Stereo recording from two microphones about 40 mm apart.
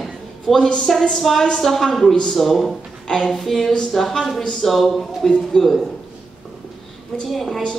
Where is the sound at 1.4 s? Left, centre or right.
Centre.